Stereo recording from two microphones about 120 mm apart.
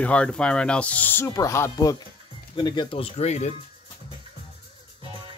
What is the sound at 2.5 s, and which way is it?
Speech, 40° left (ahead or behind).